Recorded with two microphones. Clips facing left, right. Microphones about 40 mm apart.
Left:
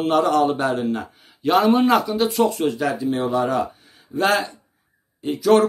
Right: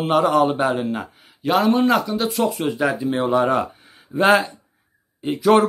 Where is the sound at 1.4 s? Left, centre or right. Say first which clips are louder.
Left 1 dB; centre.